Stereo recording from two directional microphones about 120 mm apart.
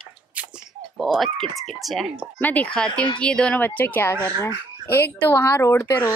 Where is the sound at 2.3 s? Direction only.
15° left (ahead or behind).